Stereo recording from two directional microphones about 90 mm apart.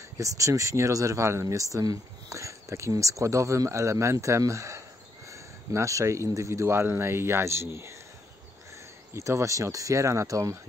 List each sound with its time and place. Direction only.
0.2 s speech: 35° right (ahead or behind)
9.1 s speech: 30° right (ahead or behind)